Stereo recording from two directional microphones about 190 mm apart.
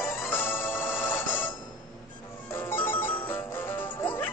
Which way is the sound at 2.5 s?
10° left (ahead or behind).